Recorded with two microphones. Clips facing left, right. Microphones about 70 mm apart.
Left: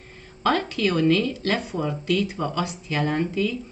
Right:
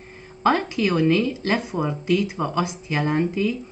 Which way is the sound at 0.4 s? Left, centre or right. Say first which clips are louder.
Right 2 dB; right.